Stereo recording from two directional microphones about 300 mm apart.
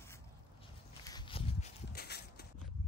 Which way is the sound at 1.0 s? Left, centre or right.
Centre.